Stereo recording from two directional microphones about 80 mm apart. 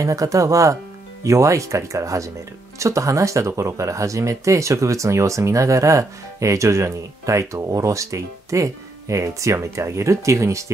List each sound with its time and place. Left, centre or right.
0.0 s speech: right